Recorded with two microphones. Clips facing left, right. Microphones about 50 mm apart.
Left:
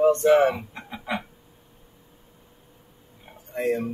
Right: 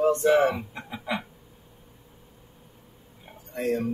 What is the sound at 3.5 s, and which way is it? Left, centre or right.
Speech, centre.